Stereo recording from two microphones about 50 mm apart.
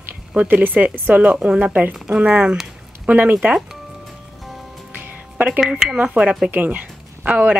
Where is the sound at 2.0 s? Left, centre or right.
Centre.